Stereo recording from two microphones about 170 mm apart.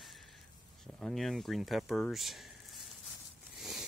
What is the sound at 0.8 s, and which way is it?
Speech, centre (ahead or behind).